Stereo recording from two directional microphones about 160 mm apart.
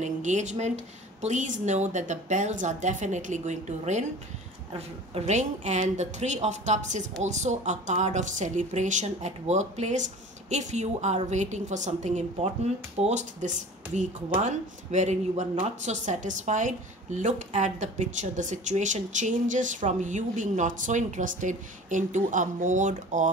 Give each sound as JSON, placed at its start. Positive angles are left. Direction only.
{"t": 0.0, "sound": "speech", "side_deg": -50}